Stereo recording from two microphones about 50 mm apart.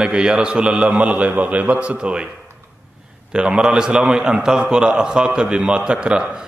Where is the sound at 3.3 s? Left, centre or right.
Centre.